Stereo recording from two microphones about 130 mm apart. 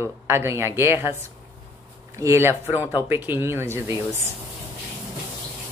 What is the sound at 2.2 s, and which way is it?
Speech, 20° right (ahead or behind).